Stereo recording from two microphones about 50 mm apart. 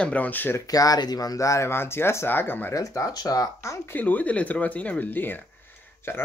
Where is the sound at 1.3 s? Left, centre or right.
Left.